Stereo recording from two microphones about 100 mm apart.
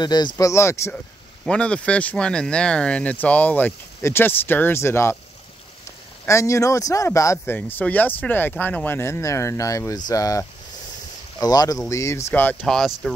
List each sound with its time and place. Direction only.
0.0 s speech: 45° left (ahead or behind)
0.5 s speech: 30° left (ahead or behind)
1.5 s speech: 10° left (ahead or behind); by 5.1 s 25° left (ahead or behind)
6.2 s speech: 30° left (ahead or behind)
12.6 s speech: 5° left (ahead or behind)